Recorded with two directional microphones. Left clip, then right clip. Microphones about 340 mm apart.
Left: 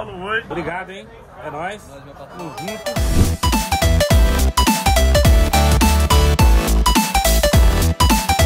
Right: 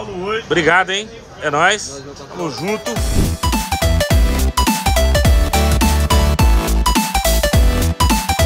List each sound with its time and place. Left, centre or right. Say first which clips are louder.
0.6 s speech: right 13 dB; right
2.6 s music: right 1 dB; centre